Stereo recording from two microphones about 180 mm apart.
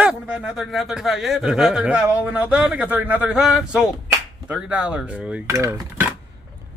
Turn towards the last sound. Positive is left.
turn(degrees=-15)  # may be behind; listen again after turning